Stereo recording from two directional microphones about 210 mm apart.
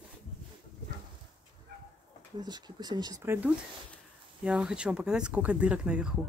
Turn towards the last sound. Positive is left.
turn(degrees=-5)  # may be behind; listen again after turning